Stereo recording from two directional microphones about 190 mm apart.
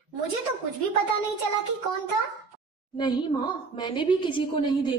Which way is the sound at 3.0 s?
25° left (ahead or behind).